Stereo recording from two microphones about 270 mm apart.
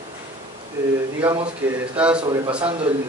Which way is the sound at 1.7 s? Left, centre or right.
Centre.